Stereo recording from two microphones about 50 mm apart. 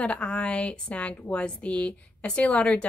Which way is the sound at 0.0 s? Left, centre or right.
Left.